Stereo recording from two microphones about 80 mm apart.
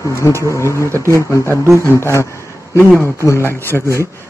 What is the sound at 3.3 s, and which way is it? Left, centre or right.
Speech, left.